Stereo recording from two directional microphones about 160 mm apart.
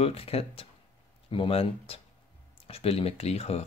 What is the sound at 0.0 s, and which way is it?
Speech, 35° left (ahead or behind).